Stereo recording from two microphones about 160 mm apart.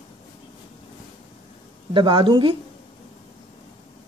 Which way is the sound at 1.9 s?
30° right (ahead or behind).